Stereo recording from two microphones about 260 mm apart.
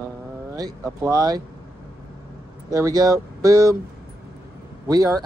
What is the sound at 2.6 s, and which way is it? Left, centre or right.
Speech, centre.